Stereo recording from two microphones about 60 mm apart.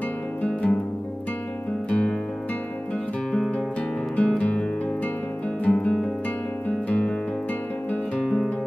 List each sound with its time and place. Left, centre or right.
0.4 s music: left
1.9 s music: centre
3.3 s music: centre
5.7 s music: centre
6.9 s guitar: left
8.2 s music: centre